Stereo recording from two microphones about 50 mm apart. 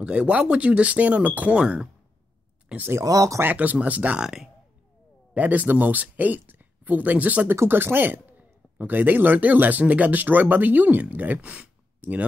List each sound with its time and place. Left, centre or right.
0.0 s speech: right
3.0 s speech: right
3.5 s a man's voice: right
4.2 s speech: centre
5.3 s speech: right
7.6 s a man's voice: right